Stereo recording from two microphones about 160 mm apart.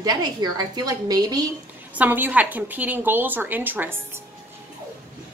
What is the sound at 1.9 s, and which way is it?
A woman's voice, 10° right (ahead or behind).